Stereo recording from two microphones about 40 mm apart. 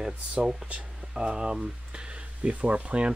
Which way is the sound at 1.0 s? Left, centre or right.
Right.